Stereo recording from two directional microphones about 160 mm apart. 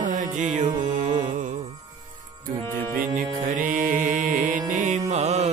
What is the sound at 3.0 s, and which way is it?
Music, 55° right (ahead or behind).